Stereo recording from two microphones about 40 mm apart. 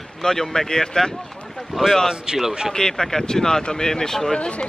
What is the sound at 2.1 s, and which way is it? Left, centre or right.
Speech, centre.